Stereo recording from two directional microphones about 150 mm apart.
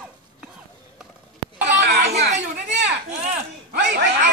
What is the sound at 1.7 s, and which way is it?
Children playing, 90° right.